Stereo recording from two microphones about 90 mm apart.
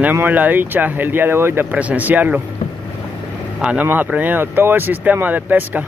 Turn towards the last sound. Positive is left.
turn(degrees=-20)  # may be behind; listen again after turning